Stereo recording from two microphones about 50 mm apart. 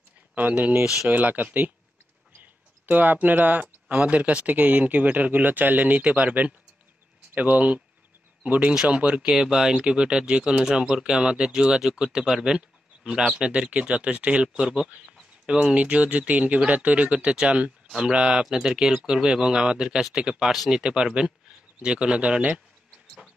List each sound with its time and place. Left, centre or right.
0.3 s speech: right
9.3 s speech: centre